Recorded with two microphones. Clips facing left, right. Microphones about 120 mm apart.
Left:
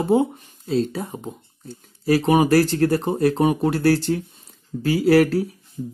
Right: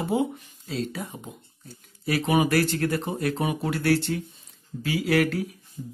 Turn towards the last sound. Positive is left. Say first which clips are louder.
# left 7 dB
turn(degrees=35)  # may be behind; listen again after turning